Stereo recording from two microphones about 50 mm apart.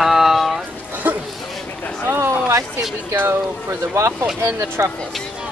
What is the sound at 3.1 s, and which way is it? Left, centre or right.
Speech, right.